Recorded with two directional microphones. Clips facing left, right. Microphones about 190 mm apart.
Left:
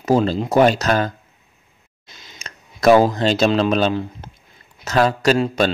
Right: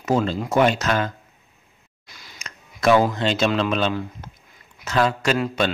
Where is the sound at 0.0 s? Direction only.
35° left (ahead or behind).